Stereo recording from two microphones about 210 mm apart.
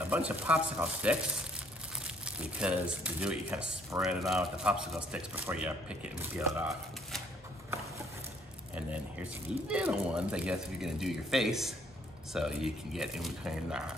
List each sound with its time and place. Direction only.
0.1 s speech: 5° right (ahead or behind)
8.7 s speech: 5° right (ahead or behind)